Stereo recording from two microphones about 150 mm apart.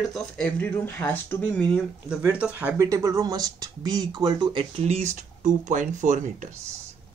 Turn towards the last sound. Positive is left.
turn(degrees=-55)  # may be behind; listen again after turning